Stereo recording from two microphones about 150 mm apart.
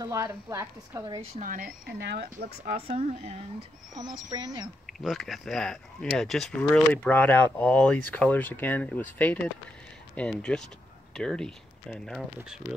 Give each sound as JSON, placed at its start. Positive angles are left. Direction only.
{"t": 0.0, "sound": "a woman's voice", "side_deg": -20}
{"t": 1.4, "sound": "speech", "side_deg": -65}
{"t": 2.7, "sound": "speech", "side_deg": -45}
{"t": 3.9, "sound": "a woman's voice", "side_deg": -25}
{"t": 4.8, "sound": "speech", "side_deg": 0}